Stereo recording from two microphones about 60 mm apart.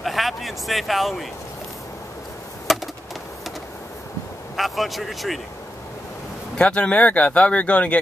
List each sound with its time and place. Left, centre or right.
0.0 s a sound: centre
2.7 s bird: centre
4.6 s speech: centre
6.6 s speech: left